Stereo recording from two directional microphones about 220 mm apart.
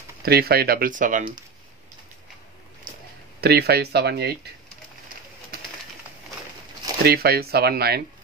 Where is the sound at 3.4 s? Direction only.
45° right (ahead or behind).